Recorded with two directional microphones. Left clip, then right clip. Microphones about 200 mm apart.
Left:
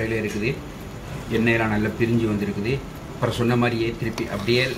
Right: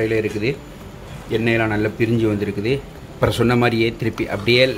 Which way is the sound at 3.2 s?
50° right (ahead or behind).